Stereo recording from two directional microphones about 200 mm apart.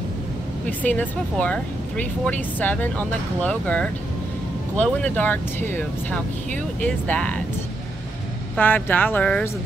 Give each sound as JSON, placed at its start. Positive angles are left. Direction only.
{"t": 0.7, "sound": "speech", "side_deg": 10}
{"t": 8.5, "sound": "speech", "side_deg": 10}